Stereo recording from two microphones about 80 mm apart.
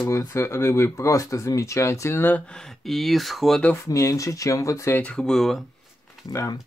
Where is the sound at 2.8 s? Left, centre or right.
Centre.